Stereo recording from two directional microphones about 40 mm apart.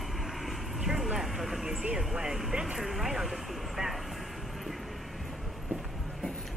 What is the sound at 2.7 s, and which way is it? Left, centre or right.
Vehicle, centre.